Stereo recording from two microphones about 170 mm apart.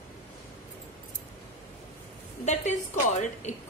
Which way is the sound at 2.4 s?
45° left (ahead or behind).